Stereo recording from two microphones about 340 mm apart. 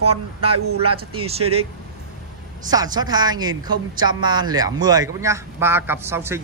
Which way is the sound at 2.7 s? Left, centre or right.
Centre.